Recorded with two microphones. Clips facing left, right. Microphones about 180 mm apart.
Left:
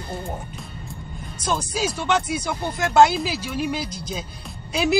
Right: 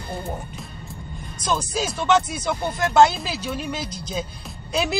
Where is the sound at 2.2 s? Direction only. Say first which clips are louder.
Even; 10° left (ahead or behind).